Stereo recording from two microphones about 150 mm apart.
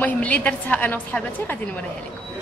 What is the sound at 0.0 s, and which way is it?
A woman's voice, 10° left (ahead or behind).